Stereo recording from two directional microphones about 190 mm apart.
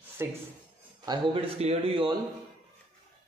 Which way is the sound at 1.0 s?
25° right (ahead or behind).